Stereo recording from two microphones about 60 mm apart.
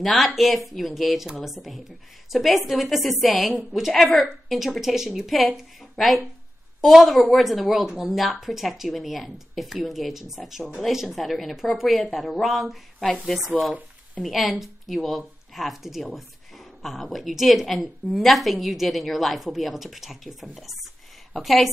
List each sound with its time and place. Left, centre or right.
0.0 s speech: centre
14.2 s speech: centre